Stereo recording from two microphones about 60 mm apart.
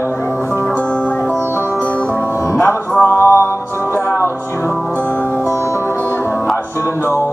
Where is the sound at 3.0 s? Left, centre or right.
Left.